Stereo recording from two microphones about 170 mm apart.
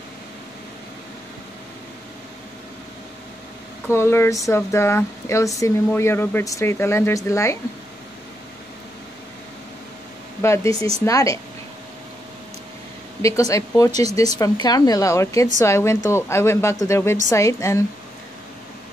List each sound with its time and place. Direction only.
3.9 s speech: 15° left (ahead or behind)
10.4 s speech: 15° left (ahead or behind)
13.2 s speech: 20° left (ahead or behind)